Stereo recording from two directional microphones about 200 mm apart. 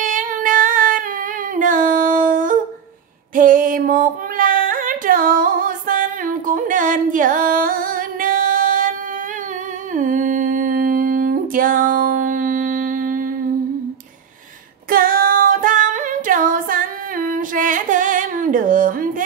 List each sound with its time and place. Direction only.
0.0 s humming: 40° right (ahead or behind)
1.5 s a sound: 40° right (ahead or behind)
3.3 s female singing: 40° right (ahead or behind)
9.9 s humming: 40° right (ahead or behind)
14.9 s female singing: 45° right (ahead or behind)